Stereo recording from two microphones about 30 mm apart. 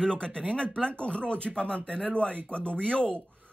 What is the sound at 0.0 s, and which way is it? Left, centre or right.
Speech, left.